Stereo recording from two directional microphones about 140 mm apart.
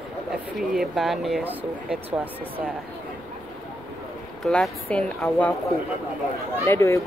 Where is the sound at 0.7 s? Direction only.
Centre (ahead or behind).